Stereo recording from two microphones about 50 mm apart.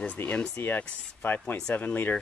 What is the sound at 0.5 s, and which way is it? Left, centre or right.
Speech, left.